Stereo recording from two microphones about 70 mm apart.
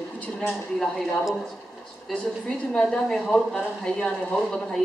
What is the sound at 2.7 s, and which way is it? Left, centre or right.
Speech, centre.